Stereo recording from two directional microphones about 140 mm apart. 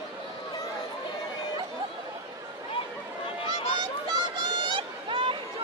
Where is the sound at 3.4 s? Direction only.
30° right (ahead or behind).